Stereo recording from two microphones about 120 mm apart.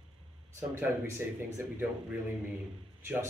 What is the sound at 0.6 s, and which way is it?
Speech, 20° right (ahead or behind).